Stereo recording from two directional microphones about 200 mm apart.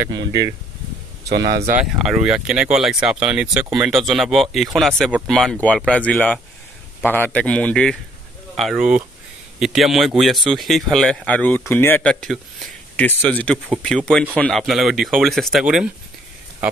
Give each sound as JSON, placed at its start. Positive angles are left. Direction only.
{"t": 0.0, "sound": "speech", "side_deg": -20}
{"t": 1.3, "sound": "speech", "side_deg": -55}
{"t": 2.0, "sound": "speech", "side_deg": -5}